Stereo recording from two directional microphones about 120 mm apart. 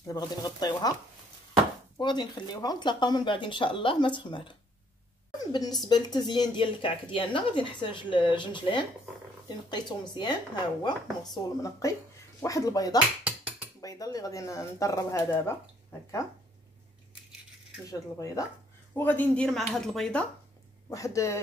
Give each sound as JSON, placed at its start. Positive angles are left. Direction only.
{"t": 0.0, "sound": "speech", "side_deg": 35}
{"t": 2.0, "sound": "speech", "side_deg": 40}
{"t": 11.4, "sound": "speech", "side_deg": 30}
{"t": 17.8, "sound": "speech", "side_deg": 30}
{"t": 18.9, "sound": "speech", "side_deg": 15}
{"t": 20.9, "sound": "speech", "side_deg": 25}